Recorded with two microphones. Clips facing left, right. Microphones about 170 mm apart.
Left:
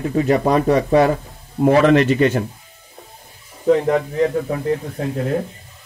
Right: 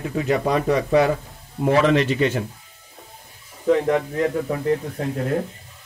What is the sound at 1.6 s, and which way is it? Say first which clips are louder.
Speech: left 5 dB; 55° left (ahead or behind).